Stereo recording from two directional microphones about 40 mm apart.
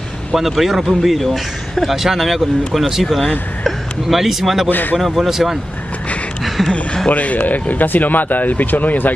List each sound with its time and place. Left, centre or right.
0.3 s a man's voice: centre
4.6 s speech: left
4.9 s a man's voice: centre
6.4 s a sound: centre
7.1 s speech: left